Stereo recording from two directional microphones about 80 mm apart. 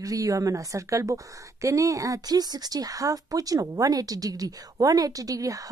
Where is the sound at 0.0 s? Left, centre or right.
Right.